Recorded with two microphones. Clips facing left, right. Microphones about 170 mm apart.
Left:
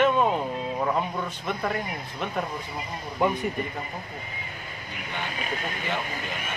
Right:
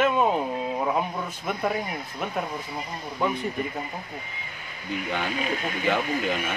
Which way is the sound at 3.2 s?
15° left (ahead or behind).